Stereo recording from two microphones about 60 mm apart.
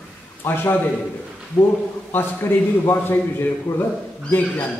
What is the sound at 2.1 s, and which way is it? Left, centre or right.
A man's voice, left.